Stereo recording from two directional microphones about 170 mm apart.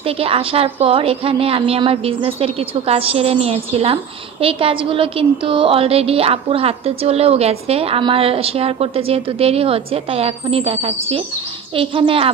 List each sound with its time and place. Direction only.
0.2 s speech: 35° right (ahead or behind)
11.7 s speech: 30° right (ahead or behind)